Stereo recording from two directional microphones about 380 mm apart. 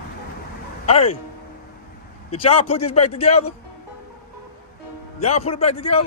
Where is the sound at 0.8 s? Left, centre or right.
Centre.